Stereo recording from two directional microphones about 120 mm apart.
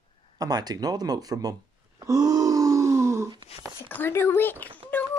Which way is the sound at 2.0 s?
30° right (ahead or behind).